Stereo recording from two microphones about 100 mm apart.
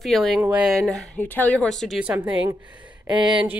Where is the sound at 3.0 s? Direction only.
50° right (ahead or behind).